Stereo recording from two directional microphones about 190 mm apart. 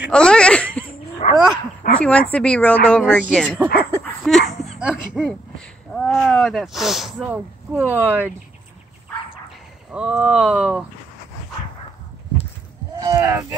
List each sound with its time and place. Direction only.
0.1 s speech: 5° left (ahead or behind)
1.2 s dog: 40° left (ahead or behind)
2.0 s speech: 5° left (ahead or behind)
3.5 s speech: 10° right (ahead or behind)
4.3 s a sound: centre (ahead or behind)
5.9 s speech: centre (ahead or behind)
9.9 s speech: 5° right (ahead or behind)
12.9 s speech: 20° right (ahead or behind)